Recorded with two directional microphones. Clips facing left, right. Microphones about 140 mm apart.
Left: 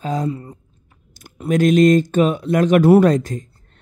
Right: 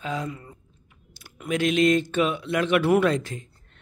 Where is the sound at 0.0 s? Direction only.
40° left (ahead or behind).